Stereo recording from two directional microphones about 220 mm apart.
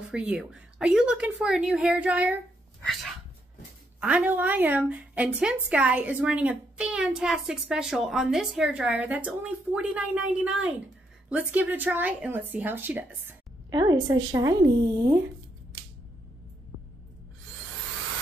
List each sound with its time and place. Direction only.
0.1 s a woman's voice: 5° right (ahead or behind)
13.7 s speech: 20° right (ahead or behind)